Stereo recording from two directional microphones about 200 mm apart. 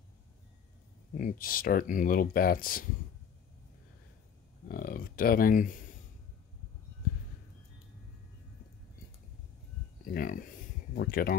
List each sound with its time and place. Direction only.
1.1 s speech: 45° left (ahead or behind)
4.6 s speech: 45° left (ahead or behind)
10.0 s speech: 45° left (ahead or behind)